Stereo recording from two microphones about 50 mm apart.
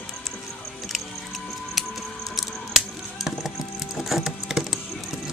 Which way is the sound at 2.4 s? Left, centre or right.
Centre.